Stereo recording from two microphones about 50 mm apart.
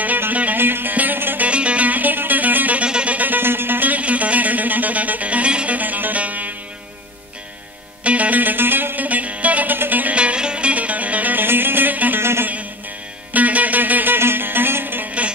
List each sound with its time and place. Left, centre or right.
0.3 s music: right
0.6 s music: right
1.5 s music: right
2.8 s music: right
3.2 s music: right
5.8 s music: right
8.0 s music: right
10.1 s music: right
11.4 s music: right
12.2 s music: right
13.3 s music: right
15.0 s music: right